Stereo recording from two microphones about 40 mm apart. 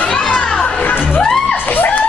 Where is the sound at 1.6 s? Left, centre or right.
Left.